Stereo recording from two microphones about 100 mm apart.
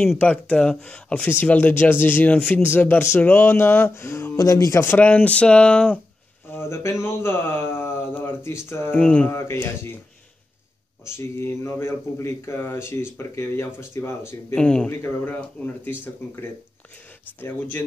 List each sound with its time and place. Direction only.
0.2 s speech: 10° left (ahead or behind); by 4.8 s 35° left (ahead or behind)
4.8 s speech: 15° left (ahead or behind)
6.5 s speech: 25° left (ahead or behind)
8.9 s speech: 10° left (ahead or behind)
9.3 s speech: 25° left (ahead or behind)
11.1 s speech: 25° left (ahead or behind)
14.5 s speech: 10° left (ahead or behind)
14.9 s speech: 20° left (ahead or behind)